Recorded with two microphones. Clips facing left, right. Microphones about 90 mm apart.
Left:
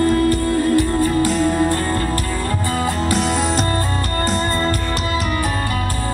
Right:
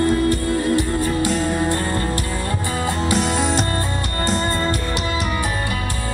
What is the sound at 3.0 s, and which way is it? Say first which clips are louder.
Music: right 1 dB; centre (ahead or behind).